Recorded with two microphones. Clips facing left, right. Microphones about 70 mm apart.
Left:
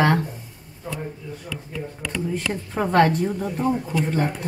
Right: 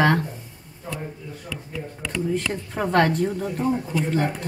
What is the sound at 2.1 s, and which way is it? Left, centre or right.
Speech, centre.